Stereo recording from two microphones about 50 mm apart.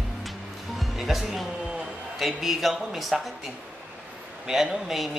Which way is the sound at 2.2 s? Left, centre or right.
Centre.